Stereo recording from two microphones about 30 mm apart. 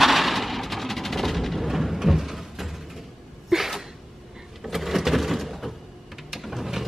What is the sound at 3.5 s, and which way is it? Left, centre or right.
Sneeze, centre.